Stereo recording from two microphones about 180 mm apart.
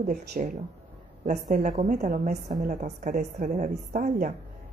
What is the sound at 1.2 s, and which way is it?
A woman's voice, 45° right (ahead or behind).